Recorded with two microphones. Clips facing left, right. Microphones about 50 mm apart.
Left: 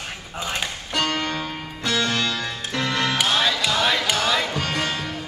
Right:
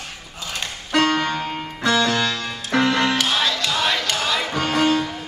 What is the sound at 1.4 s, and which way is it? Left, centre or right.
Music, right.